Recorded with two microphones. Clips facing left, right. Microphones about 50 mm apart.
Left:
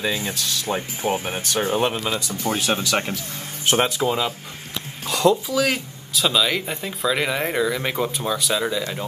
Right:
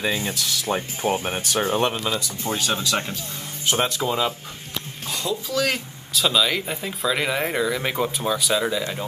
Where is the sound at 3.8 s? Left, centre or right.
Centre.